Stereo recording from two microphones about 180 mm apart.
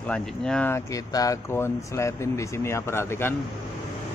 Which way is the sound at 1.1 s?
20° left (ahead or behind).